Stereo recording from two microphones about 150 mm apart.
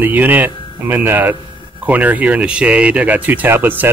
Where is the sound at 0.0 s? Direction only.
10° right (ahead or behind).